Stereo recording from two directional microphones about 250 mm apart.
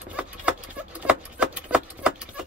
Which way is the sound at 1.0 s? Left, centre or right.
Centre.